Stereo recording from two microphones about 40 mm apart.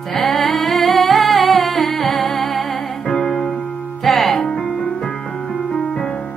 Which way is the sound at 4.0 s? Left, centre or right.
Centre.